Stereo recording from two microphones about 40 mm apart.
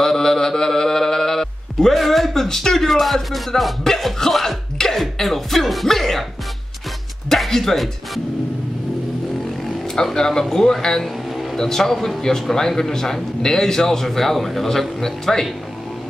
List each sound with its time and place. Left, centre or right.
0.0 s mantra: centre
2.0 s speech: centre
5.0 s music: centre
7.2 s music: centre
10.1 s a man's voice: centre